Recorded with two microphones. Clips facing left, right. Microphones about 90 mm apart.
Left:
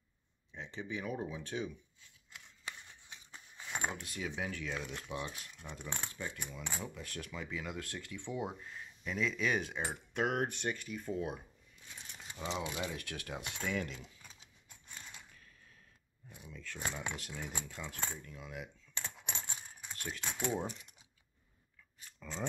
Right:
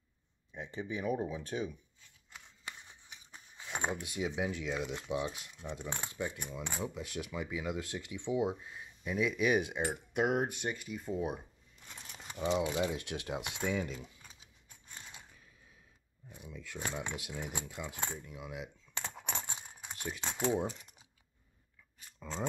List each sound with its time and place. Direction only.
0.7 s speech: 10° right (ahead or behind)
3.3 s a sound: 5° right (ahead or behind)
3.9 s speech: 15° right (ahead or behind)
11.1 s speech: 20° right (ahead or behind)
12.6 s speech: 25° right (ahead or behind)
16.3 s speech: 15° right (ahead or behind)
19.1 s typing: 45° right (ahead or behind)
19.8 s typing: 15° right (ahead or behind)
20.2 s speech: 25° right (ahead or behind)
22.2 s speech: 15° right (ahead or behind)